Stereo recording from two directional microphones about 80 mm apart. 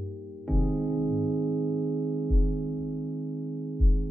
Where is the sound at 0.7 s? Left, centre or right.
Centre.